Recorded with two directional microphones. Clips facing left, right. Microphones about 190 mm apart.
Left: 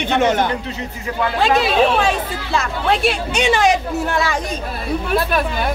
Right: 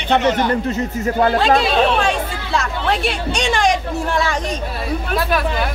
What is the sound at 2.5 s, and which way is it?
Speech, centre (ahead or behind).